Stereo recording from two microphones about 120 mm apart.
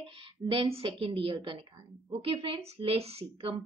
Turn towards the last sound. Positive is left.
turn(degrees=-55)  # may be behind; listen again after turning